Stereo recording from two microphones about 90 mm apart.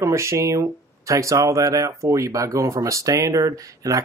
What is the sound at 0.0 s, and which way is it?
Speech, 35° right (ahead or behind).